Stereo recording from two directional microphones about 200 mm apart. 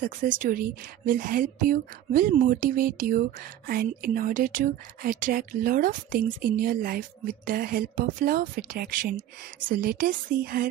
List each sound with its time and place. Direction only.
0.0 s a woman's voice: 40° right (ahead or behind)